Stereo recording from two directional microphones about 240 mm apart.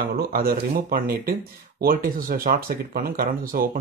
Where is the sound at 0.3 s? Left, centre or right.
Right.